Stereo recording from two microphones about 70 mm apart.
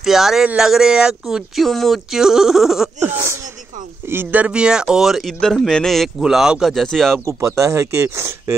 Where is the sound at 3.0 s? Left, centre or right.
Right; by 6.7 s centre.